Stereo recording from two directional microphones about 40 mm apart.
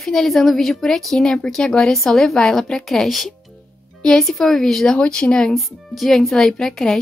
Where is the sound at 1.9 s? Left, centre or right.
Centre.